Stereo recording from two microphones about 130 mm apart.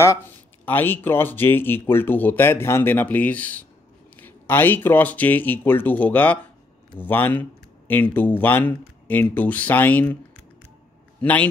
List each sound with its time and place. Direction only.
0.0 s speech: 20° left (ahead or behind)
11.1 s a man's voice: 10° left (ahead or behind)